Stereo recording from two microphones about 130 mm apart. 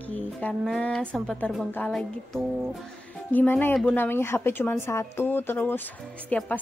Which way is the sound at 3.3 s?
15° left (ahead or behind).